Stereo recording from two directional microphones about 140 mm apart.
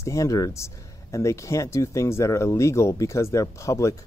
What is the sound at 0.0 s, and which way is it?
Speech, 20° left (ahead or behind).